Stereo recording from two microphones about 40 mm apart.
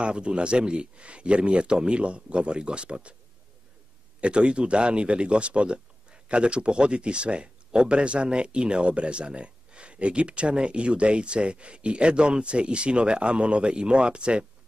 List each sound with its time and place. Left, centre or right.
0.0 s speech: right
4.2 s speech: right